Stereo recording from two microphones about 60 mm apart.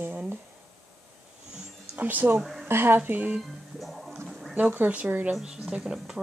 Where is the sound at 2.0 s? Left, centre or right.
Right.